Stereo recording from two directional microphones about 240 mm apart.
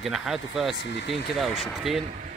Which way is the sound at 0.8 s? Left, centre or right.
Left.